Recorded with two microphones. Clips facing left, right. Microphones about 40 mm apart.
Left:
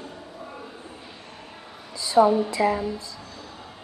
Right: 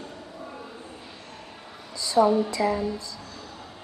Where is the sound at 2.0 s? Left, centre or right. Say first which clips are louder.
Left 3 dB; left.